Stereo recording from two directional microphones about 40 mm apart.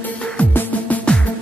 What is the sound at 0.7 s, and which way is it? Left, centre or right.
Music, left.